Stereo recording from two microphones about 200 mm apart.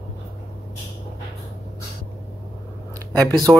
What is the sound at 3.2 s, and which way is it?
Speech, 20° right (ahead or behind).